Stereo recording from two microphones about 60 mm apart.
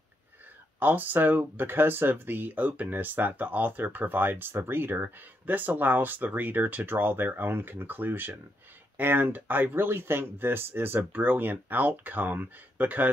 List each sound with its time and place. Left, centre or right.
0.7 s speech: right